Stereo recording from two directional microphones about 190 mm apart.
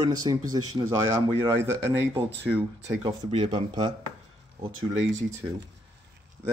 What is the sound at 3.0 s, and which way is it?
Speech, 30° right (ahead or behind).